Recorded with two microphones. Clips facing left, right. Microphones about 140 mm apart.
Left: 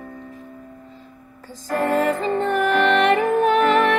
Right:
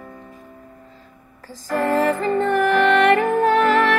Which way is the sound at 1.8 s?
15° left (ahead or behind).